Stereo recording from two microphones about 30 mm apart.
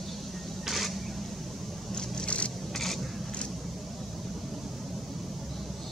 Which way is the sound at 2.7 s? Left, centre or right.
Centre.